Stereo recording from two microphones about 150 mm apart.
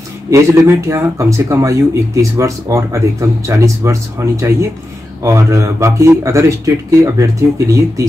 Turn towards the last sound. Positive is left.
turn(degrees=-20)  # may be behind; listen again after turning